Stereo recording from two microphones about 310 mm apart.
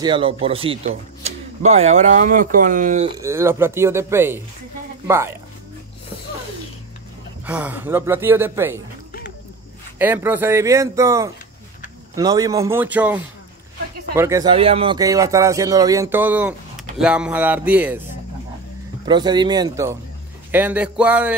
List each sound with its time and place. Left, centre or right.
0.0 s speech: centre
3.2 s speech: centre
7.4 s speech: centre
9.9 s speech: centre
19.0 s speech: centre